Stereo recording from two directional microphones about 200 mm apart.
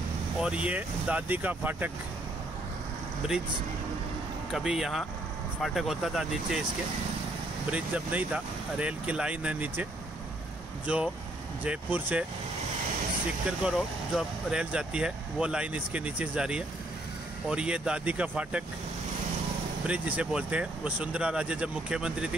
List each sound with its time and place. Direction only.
0.4 s speech: 5° right (ahead or behind)
4.5 s speech: centre (ahead or behind)
7.7 s speech: 5° right (ahead or behind)
10.9 s speech: 5° right (ahead or behind)
13.5 s speech: 5° right (ahead or behind)
19.9 s speech: 5° right (ahead or behind)